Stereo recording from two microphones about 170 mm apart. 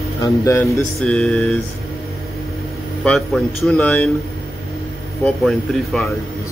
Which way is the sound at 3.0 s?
5° left (ahead or behind).